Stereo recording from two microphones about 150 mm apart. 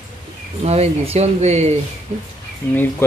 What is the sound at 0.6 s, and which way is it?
Speech, 45° right (ahead or behind).